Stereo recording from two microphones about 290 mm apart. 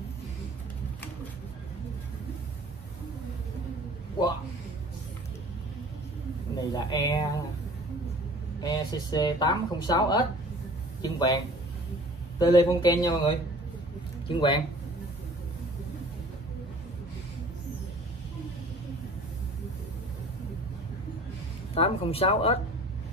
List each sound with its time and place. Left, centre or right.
6.7 s speech: centre
8.5 s a man's voice: centre
21.7 s speech: centre